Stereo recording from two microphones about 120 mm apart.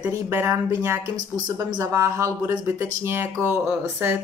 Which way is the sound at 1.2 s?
35° right (ahead or behind).